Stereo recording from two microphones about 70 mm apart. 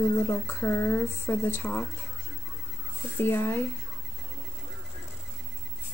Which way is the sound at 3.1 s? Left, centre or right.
Left.